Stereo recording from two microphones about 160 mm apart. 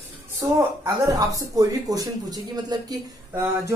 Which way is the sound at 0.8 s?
20° right (ahead or behind).